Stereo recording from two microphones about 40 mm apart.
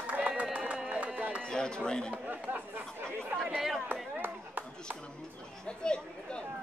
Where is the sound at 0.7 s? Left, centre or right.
Centre.